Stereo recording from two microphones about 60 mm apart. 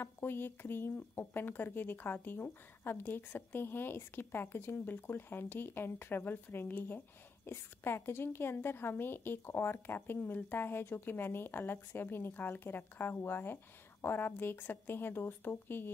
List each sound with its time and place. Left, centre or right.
0.0 s speech: left